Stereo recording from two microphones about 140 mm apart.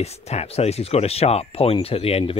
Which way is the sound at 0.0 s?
50° left (ahead or behind).